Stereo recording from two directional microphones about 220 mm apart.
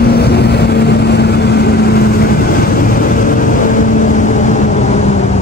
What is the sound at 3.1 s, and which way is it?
Vehicle, 35° left (ahead or behind).